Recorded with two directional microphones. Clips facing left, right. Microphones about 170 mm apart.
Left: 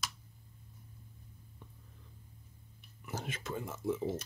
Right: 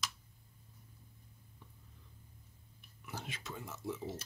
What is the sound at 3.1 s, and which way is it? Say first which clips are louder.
Speech: left 6 dB; 45° left (ahead or behind).